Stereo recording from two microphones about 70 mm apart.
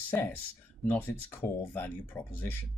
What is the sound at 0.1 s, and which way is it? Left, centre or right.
Speech, left.